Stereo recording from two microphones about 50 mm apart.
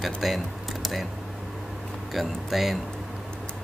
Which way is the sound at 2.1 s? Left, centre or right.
Centre.